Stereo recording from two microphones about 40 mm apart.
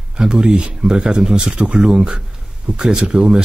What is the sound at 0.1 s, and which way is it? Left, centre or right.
Speech, right.